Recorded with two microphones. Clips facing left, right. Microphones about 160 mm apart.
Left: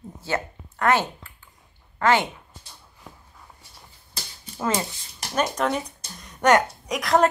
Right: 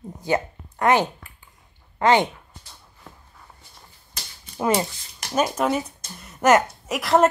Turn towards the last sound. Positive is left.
turn(degrees=0)  # may be behind; listen again after turning